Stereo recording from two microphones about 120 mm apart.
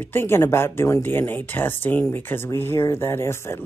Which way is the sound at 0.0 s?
20° left (ahead or behind).